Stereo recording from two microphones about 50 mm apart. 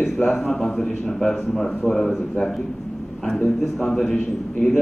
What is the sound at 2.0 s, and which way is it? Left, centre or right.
A man's voice, centre.